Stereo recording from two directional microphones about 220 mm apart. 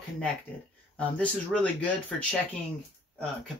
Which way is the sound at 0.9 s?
5° left (ahead or behind).